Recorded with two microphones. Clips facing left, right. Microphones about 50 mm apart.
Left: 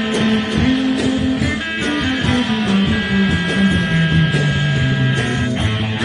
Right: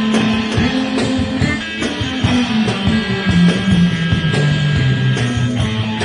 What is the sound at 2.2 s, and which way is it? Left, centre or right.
Music, right.